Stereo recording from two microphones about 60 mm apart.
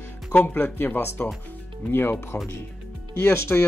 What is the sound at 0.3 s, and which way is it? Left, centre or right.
A man's voice, left.